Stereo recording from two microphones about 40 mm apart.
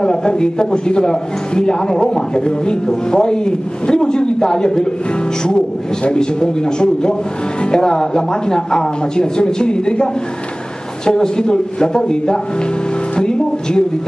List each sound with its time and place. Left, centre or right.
0.0 s a man's voice: centre
6.0 s a man's voice: left
11.1 s a man's voice: centre
13.1 s music: centre